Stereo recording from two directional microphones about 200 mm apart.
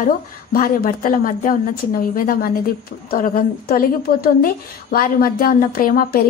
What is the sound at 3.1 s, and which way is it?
A woman's voice, 45° left (ahead or behind).